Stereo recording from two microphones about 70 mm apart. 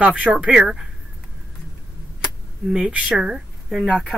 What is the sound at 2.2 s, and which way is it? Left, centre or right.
Speech, centre.